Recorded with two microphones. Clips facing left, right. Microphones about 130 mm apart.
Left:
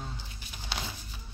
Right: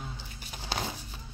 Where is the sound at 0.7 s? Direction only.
45° right (ahead or behind).